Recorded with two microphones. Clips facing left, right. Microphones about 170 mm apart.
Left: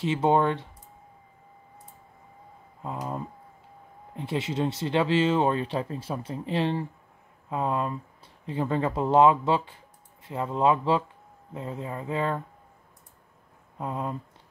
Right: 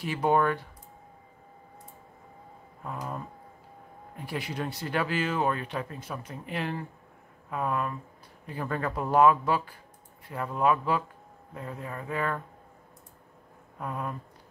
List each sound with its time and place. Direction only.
0.0 s speech: 25° left (ahead or behind)
2.8 s speech: 20° left (ahead or behind)
13.7 s speech: 20° left (ahead or behind)